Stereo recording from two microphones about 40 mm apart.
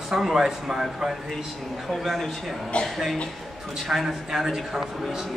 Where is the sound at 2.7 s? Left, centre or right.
Left.